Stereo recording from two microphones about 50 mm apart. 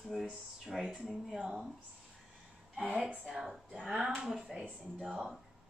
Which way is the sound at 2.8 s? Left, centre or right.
Right.